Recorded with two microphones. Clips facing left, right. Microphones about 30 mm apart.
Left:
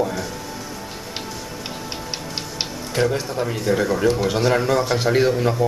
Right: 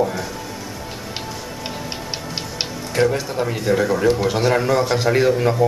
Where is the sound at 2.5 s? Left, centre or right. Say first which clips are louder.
Right 3 dB; centre.